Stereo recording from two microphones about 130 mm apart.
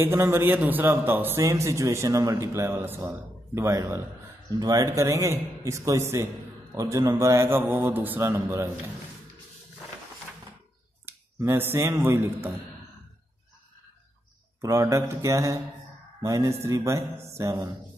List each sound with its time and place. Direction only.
0.0 s a man's voice: 20° right (ahead or behind)
11.1 s a man's voice: 20° right (ahead or behind)
14.6 s a man's voice: 25° right (ahead or behind)